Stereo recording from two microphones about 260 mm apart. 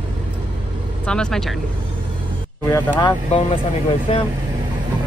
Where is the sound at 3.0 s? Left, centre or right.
Centre.